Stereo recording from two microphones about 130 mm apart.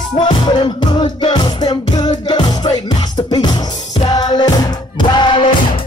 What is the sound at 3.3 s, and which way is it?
Music, 30° left (ahead or behind).